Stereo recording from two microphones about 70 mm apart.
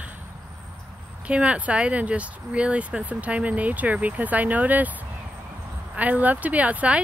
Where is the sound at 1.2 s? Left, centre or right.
Centre.